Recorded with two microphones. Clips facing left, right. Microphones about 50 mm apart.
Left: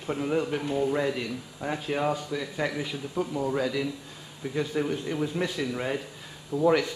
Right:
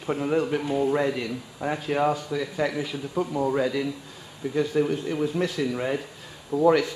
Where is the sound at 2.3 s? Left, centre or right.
Centre.